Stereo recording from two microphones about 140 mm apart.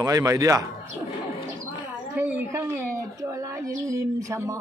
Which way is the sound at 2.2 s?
15° right (ahead or behind).